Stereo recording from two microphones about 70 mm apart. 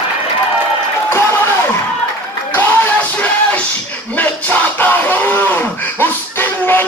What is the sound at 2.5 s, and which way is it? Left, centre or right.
Music, left.